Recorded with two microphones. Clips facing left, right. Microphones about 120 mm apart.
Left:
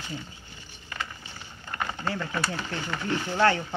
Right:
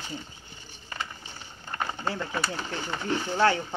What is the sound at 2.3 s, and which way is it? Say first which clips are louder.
Speech: even; 15° right (ahead or behind).